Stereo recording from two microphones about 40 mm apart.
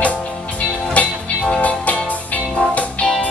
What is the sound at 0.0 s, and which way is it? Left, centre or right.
Music, left.